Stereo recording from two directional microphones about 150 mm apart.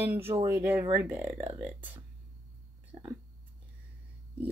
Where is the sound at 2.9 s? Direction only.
30° right (ahead or behind).